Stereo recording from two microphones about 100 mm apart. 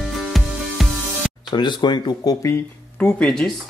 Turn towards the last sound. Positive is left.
turn(degrees=5)  # may be behind; listen again after turning